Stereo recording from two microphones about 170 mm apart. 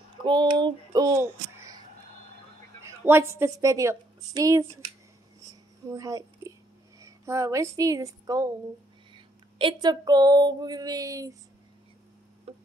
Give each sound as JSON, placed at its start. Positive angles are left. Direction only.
{"t": 0.2, "sound": "a child's voice", "side_deg": -25}
{"t": 2.8, "sound": "a woman's voice", "side_deg": -15}
{"t": 5.9, "sound": "a woman's voice", "side_deg": -20}
{"t": 9.1, "sound": "a sound", "side_deg": -30}
{"t": 12.5, "sound": "tick-tock", "side_deg": -40}